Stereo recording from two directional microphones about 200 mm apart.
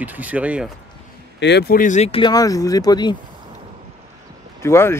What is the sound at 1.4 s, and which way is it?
Speech, 55° left (ahead or behind).